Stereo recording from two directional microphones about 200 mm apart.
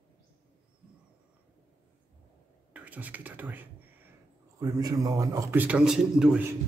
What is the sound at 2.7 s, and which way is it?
A man's voice, 10° right (ahead or behind).